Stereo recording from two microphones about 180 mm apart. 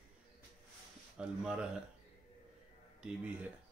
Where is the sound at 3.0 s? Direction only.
5° right (ahead or behind).